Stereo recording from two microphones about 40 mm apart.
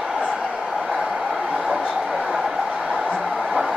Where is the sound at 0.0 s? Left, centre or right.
Centre.